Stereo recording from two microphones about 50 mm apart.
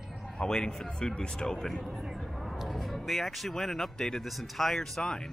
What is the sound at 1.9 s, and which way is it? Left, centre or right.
Speech, centre.